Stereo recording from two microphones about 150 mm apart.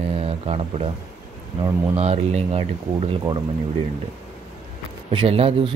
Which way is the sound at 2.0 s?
45° right (ahead or behind).